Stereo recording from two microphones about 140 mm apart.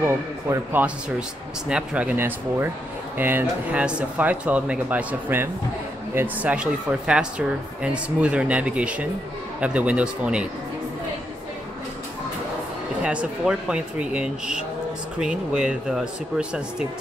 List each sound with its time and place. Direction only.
0.0 s speech: 20° right (ahead or behind)
1.7 s speech: 5° right (ahead or behind)
13.0 s speech: 10° right (ahead or behind)